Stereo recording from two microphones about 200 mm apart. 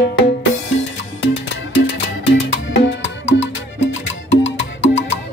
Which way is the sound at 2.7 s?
60° left (ahead or behind).